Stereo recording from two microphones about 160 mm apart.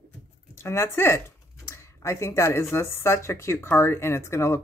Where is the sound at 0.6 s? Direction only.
15° left (ahead or behind).